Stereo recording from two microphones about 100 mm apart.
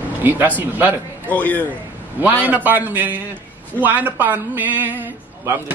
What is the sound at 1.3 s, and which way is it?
Speech, 15° left (ahead or behind).